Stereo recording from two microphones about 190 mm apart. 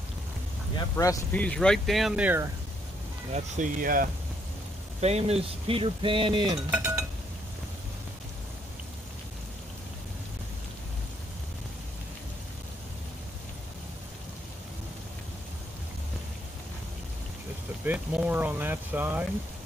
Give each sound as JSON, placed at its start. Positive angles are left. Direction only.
{"t": 0.7, "sound": "speech", "side_deg": 15}
{"t": 1.4, "sound": "speech", "side_deg": 5}
{"t": 3.3, "sound": "speech", "side_deg": -45}
{"t": 5.0, "sound": "speech", "side_deg": -35}
{"t": 6.7, "sound": "chink", "side_deg": -15}
{"t": 17.8, "sound": "speech", "side_deg": -5}